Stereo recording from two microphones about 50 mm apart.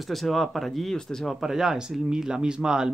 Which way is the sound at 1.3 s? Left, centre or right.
Centre.